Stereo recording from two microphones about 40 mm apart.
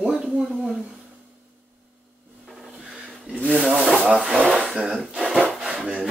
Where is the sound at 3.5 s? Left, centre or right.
Centre.